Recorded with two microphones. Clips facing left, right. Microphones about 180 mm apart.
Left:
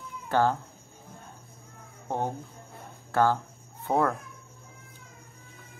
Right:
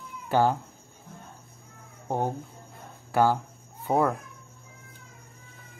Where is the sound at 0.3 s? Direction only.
10° right (ahead or behind).